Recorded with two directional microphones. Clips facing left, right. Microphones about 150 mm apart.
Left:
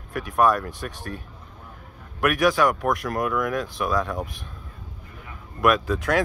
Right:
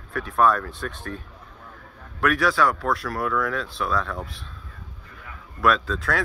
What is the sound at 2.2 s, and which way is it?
Speech, 15° left (ahead or behind).